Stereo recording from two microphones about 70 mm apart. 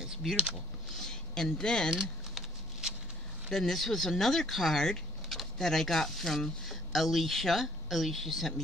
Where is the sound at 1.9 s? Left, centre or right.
Centre.